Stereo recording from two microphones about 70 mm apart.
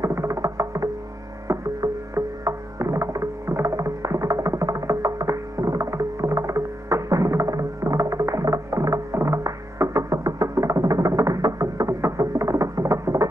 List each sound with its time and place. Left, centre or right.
0.0 s music: right